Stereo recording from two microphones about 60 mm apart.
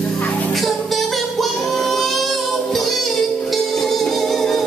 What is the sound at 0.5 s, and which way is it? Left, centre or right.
Singing, centre.